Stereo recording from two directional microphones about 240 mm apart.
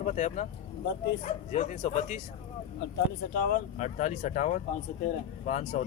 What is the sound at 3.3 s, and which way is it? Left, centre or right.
Speech, left.